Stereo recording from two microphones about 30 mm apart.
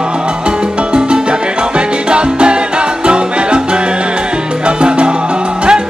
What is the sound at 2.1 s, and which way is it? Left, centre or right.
Salsa music, right.